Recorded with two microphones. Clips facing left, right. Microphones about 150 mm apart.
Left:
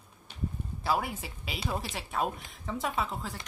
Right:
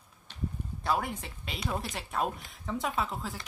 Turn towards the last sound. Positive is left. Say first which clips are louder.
# even
turn(degrees=0)  # may be behind; listen again after turning